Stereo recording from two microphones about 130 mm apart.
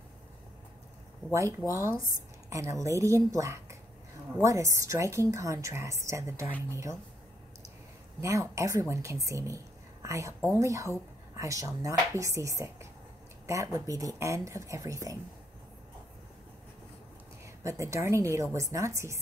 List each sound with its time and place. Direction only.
1.7 s speech: 25° right (ahead or behind)
8.2 s speech: 25° right (ahead or behind)
17.6 s speech: 25° right (ahead or behind)